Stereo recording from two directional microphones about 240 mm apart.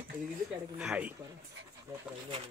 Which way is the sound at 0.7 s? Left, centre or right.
Centre.